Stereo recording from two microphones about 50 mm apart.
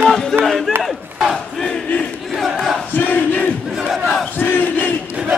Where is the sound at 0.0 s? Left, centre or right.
Centre.